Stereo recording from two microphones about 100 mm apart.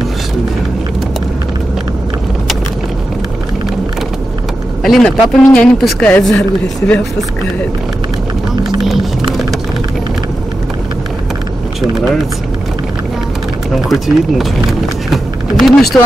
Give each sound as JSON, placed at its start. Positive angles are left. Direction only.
{"t": 4.8, "sound": "speech", "side_deg": 5}
{"t": 13.8, "sound": "speech", "side_deg": 0}
{"t": 15.0, "sound": "vehicle", "side_deg": 0}